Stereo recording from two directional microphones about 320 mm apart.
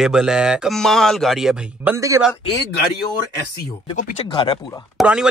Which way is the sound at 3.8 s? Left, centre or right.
Centre.